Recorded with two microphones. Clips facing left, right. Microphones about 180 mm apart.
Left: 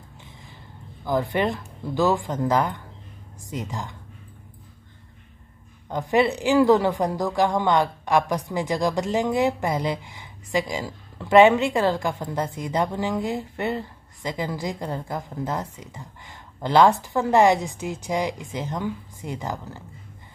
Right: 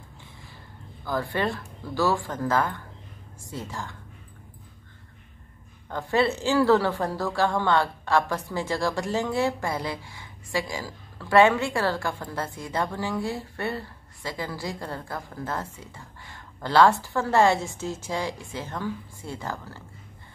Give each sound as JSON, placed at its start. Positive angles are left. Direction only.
{"t": 1.0, "sound": "a woman's voice", "side_deg": 20}
{"t": 5.9, "sound": "a woman's voice", "side_deg": 15}